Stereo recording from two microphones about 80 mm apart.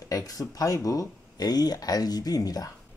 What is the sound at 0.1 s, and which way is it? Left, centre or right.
Speech, left.